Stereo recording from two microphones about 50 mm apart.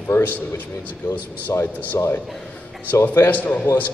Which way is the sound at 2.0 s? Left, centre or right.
Left.